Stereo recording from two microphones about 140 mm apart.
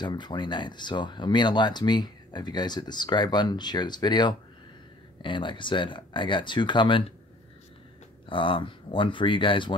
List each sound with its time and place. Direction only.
0.0 s speech: 30° left (ahead or behind)
8.3 s speech: 35° left (ahead or behind)